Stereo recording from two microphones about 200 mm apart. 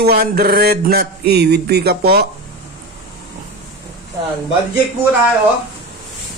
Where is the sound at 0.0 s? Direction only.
50° right (ahead or behind).